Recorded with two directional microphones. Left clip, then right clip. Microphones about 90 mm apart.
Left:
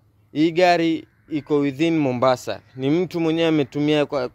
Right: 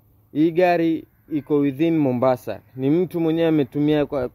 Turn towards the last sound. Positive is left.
turn(degrees=-45)  # may be behind; listen again after turning